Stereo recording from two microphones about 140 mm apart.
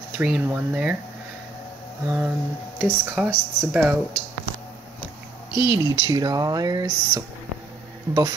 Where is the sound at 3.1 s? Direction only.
10° right (ahead or behind).